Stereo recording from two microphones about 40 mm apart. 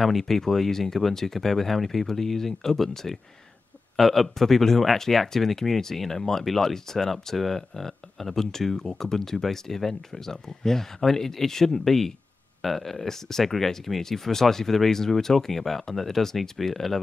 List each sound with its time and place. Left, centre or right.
0.0 s speech: centre